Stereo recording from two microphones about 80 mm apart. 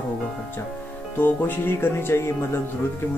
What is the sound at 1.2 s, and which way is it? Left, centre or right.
Speech, left.